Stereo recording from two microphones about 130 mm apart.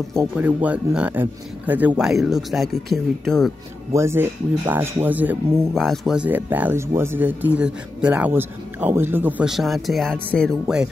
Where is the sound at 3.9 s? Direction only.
20° right (ahead or behind).